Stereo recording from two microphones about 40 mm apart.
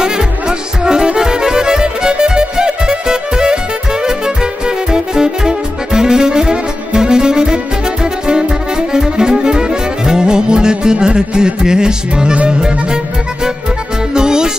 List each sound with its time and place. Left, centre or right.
0.0 s music: centre